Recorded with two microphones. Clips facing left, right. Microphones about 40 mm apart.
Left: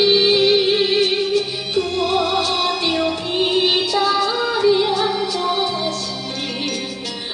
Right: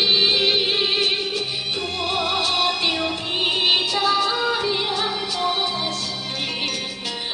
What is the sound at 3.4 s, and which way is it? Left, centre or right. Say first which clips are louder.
Music: left 3 dB; right.